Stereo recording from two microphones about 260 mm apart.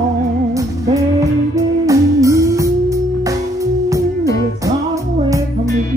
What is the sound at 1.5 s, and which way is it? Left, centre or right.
Music, centre.